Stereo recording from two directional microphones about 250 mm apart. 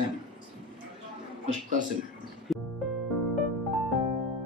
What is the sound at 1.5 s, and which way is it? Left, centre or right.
Speech, right.